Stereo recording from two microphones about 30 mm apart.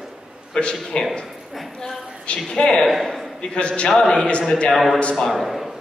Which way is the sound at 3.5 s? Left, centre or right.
Left.